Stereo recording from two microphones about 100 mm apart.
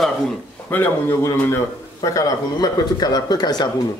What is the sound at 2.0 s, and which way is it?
Speech, 40° left (ahead or behind).